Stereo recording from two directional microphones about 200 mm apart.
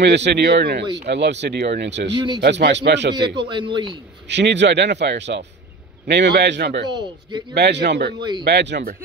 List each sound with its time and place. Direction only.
0.0 s speech: 60° right (ahead or behind)
2.1 s speech: 20° right (ahead or behind)
2.4 s speech: 60° right (ahead or behind)
3.3 s speech: 25° right (ahead or behind)
4.3 s speech: 60° right (ahead or behind)
6.9 s speech: 20° right (ahead or behind)
7.5 s speech: 60° right (ahead or behind)
8.2 s speech: 20° right (ahead or behind)
8.5 s speech: 60° right (ahead or behind)